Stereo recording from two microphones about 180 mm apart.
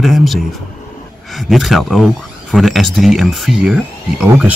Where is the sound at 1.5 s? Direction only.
Centre (ahead or behind).